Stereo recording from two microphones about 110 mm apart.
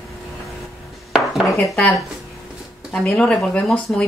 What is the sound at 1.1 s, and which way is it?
Dishes, centre (ahead or behind).